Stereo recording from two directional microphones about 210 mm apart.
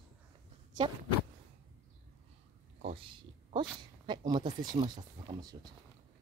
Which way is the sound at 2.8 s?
30° right (ahead or behind).